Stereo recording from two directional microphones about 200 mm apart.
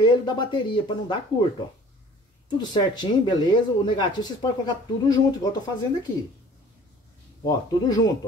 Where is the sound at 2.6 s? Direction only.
20° left (ahead or behind).